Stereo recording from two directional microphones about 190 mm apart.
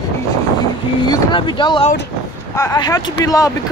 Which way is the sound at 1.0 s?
25° left (ahead or behind).